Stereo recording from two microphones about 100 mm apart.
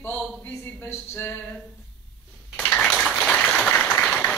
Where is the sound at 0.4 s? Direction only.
25° left (ahead or behind).